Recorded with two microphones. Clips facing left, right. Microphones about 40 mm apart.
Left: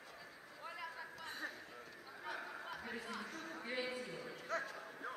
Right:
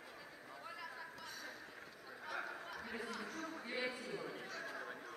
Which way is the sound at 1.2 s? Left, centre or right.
Left.